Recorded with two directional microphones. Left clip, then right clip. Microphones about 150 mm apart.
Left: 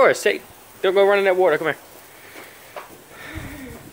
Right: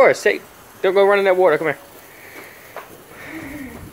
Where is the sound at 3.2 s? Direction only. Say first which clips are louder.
Right 3 dB; 15° left (ahead or behind).